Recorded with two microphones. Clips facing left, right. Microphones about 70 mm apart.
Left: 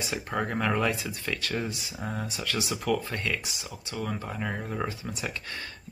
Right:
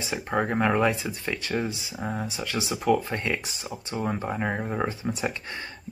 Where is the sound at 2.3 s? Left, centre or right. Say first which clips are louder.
Right 2 dB; right.